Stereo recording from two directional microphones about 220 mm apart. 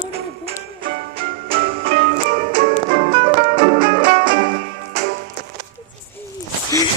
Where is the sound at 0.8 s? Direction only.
40° right (ahead or behind).